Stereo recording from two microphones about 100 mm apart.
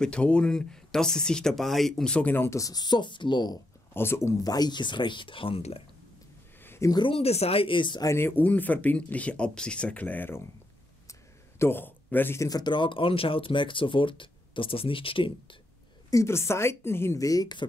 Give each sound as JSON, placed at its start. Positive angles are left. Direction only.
{"t": 0.0, "sound": "speech", "side_deg": 10}
{"t": 3.9, "sound": "speech", "side_deg": 25}
{"t": 4.4, "sound": "speech", "side_deg": 40}
{"t": 6.6, "sound": "a sound", "side_deg": 25}
{"t": 6.9, "sound": "speech", "side_deg": 50}
{"t": 7.2, "sound": "speech", "side_deg": 90}
{"t": 8.2, "sound": "speech", "side_deg": 20}
{"t": 11.1, "sound": "a sound", "side_deg": 25}
{"t": 12.4, "sound": "speech", "side_deg": 40}
{"t": 16.1, "sound": "speech", "side_deg": 30}